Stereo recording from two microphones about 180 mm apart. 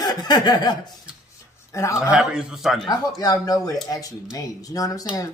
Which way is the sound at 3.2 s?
20° left (ahead or behind).